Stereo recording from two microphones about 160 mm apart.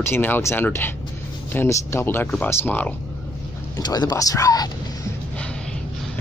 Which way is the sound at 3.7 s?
25° left (ahead or behind).